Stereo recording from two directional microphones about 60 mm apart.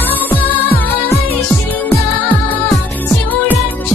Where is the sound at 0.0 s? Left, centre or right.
Left.